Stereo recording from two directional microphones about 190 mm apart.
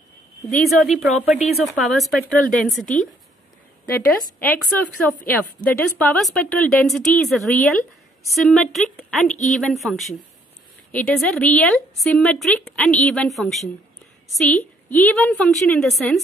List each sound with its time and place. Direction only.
0.5 s a woman's voice: centre (ahead or behind)
2.8 s a woman's voice: 40° left (ahead or behind)
4.4 s a woman's voice: 5° left (ahead or behind)